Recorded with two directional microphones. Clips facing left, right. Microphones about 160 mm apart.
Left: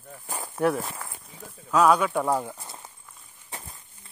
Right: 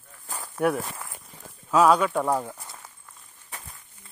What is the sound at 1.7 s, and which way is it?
Speech, centre (ahead or behind).